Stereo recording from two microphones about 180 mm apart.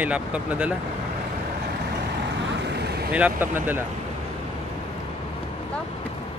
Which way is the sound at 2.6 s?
65° right (ahead or behind).